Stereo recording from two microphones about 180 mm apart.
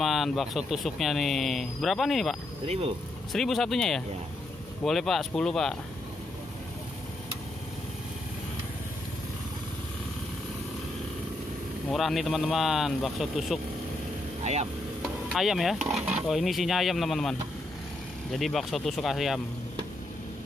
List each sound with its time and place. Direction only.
0.0 s speech: centre (ahead or behind)
2.6 s speech: 35° right (ahead or behind)
3.3 s speech: centre (ahead or behind)
11.9 s speech: centre (ahead or behind)
14.4 s vehicle: 40° right (ahead or behind)
15.2 s speech: centre (ahead or behind)